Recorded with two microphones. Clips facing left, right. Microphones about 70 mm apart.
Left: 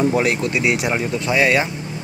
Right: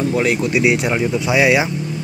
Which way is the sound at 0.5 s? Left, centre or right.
Centre.